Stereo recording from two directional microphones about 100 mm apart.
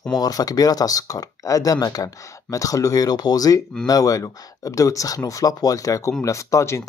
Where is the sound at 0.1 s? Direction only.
40° left (ahead or behind).